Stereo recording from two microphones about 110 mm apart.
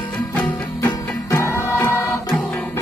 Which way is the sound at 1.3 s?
25° left (ahead or behind).